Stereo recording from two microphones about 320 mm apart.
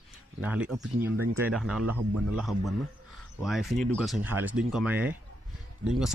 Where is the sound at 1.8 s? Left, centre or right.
Right.